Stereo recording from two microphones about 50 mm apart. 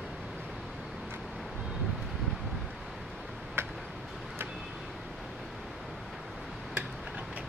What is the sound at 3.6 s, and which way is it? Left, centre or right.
Tick-tock, right.